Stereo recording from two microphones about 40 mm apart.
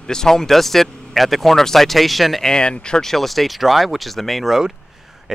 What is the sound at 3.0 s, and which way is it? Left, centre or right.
Speech, centre.